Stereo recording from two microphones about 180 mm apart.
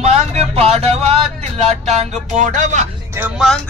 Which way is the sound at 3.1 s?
5° right (ahead or behind).